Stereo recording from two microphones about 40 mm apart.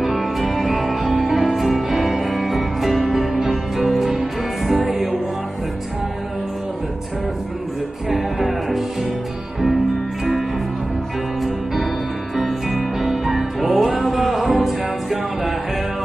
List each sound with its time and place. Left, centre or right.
0.0 s music: centre
8.1 s music: centre
11.4 s music: centre